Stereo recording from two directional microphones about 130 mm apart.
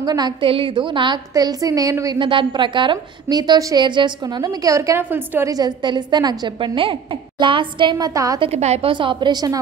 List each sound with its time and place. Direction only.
0.0 s a woman's voice: 30° right (ahead or behind)
2.1 s a woman's voice: 40° right (ahead or behind); by 5.5 s 15° right (ahead or behind)
5.5 s a woman's voice: 35° right (ahead or behind)
8.4 s a woman's voice: 55° right (ahead or behind)
8.9 s a woman's voice: 40° right (ahead or behind)